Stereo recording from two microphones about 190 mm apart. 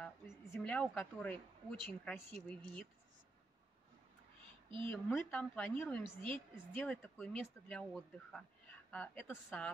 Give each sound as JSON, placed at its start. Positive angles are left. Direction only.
{"t": 0.0, "sound": "speech", "side_deg": 5}
{"t": 4.6, "sound": "speech", "side_deg": -25}
{"t": 4.9, "sound": "speech", "side_deg": 10}
{"t": 6.0, "sound": "a woman's voice", "side_deg": -25}
{"t": 6.7, "sound": "speech", "side_deg": 10}